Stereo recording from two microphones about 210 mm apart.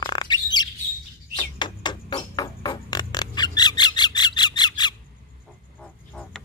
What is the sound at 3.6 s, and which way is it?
Squawk, 20° left (ahead or behind).